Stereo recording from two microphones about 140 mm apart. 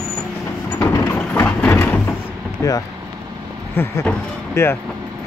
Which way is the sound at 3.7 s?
10° left (ahead or behind).